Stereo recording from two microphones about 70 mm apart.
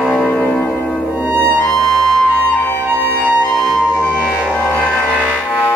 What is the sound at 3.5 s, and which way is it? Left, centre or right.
Music, centre.